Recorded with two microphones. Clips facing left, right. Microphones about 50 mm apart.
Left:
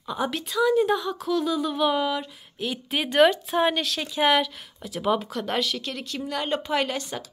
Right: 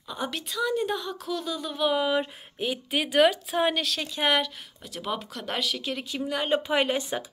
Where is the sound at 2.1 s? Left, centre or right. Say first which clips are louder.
Right 2 dB; centre.